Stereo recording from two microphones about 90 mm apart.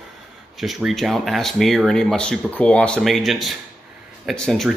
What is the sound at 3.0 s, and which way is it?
Speech, centre (ahead or behind).